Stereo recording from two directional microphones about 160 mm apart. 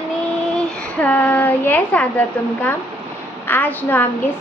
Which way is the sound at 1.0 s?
10° left (ahead or behind).